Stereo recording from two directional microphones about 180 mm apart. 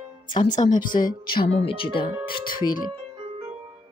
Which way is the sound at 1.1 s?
55° left (ahead or behind).